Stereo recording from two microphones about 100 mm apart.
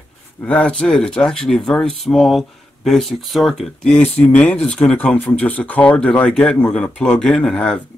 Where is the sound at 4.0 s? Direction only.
15° left (ahead or behind).